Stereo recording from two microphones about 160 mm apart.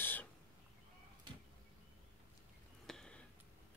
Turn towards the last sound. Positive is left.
turn(degrees=5)  # may be behind; listen again after turning